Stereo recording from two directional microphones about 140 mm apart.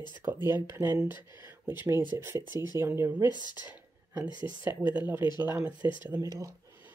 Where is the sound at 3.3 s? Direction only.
30° left (ahead or behind).